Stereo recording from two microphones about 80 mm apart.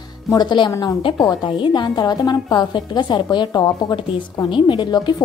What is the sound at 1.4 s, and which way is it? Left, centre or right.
A woman's voice, left.